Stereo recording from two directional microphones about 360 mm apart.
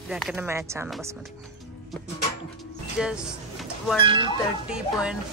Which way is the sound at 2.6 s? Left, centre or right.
Centre.